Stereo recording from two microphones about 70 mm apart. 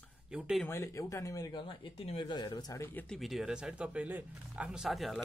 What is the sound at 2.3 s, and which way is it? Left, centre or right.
Speech, left.